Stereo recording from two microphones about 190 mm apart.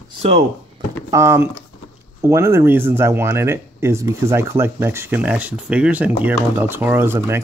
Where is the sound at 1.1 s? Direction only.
15° right (ahead or behind).